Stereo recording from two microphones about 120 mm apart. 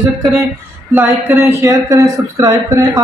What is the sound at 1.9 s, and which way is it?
Speech, 30° right (ahead or behind).